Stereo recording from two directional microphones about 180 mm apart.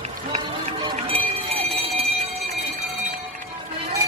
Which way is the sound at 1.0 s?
30° right (ahead or behind).